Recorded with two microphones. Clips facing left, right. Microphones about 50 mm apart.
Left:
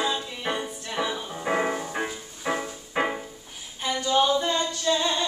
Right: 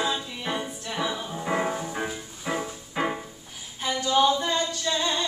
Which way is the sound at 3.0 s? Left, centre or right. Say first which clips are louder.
Left 2 dB; left.